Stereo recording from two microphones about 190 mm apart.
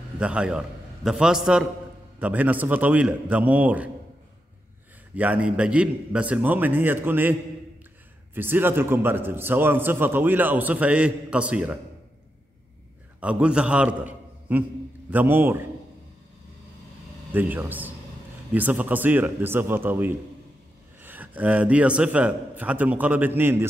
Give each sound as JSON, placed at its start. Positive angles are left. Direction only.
{"t": 0.2, "sound": "a man's voice", "side_deg": -5}
{"t": 5.1, "sound": "a man's voice", "side_deg": -10}
{"t": 8.4, "sound": "a man's voice", "side_deg": -10}
{"t": 13.2, "sound": "a man's voice", "side_deg": -5}
{"t": 17.3, "sound": "a man's voice", "side_deg": -10}